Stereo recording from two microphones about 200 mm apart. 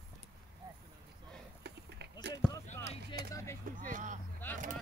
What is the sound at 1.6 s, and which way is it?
Run, 55° right (ahead or behind).